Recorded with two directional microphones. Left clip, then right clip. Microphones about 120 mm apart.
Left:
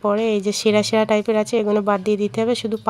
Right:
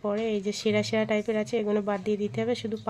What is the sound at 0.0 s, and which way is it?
Speech, 35° left (ahead or behind).